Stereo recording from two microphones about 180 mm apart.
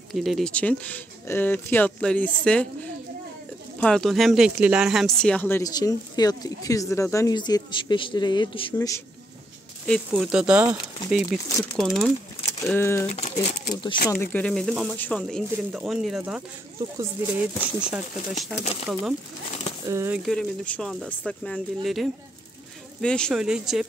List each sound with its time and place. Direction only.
0.1 s speech: centre (ahead or behind)
5.6 s speech: 20° left (ahead or behind)
10.1 s speech: 5° right (ahead or behind)
12.7 s speech: 15° left (ahead or behind)
13.1 s speech: 35° left (ahead or behind)
14.2 s speech: 10° left (ahead or behind)
19.9 s speech: 15° right (ahead or behind)
20.2 s speech: 5° left (ahead or behind)